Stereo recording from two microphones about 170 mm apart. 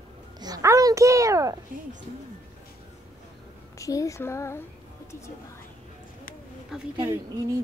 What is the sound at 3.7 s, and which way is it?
Speech, 20° left (ahead or behind).